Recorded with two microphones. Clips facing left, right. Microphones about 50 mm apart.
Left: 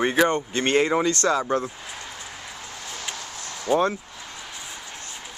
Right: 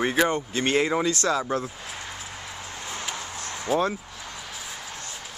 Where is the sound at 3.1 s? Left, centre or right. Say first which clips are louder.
Right 2 dB; centre.